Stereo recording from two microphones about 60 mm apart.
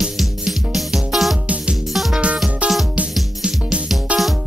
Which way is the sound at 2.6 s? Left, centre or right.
Right.